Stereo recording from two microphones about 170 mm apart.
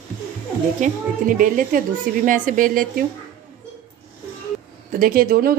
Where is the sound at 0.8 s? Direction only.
50° right (ahead or behind).